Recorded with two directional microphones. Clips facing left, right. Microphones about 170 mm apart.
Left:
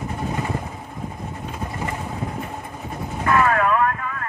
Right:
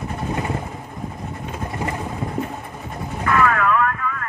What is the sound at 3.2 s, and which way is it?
Vehicle, 30° left (ahead or behind).